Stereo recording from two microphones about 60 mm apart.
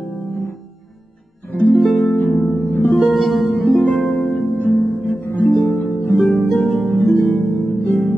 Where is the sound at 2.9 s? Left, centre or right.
Centre.